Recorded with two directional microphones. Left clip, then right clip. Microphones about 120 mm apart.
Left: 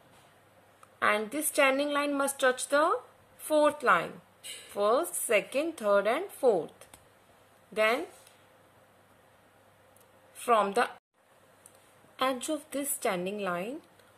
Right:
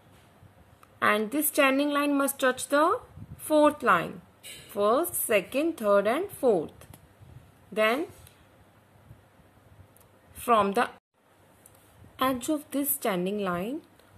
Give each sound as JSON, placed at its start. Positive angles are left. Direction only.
{"t": 0.9, "sound": "speech", "side_deg": -15}
{"t": 10.3, "sound": "a woman's voice", "side_deg": -15}
{"t": 12.2, "sound": "speech", "side_deg": -15}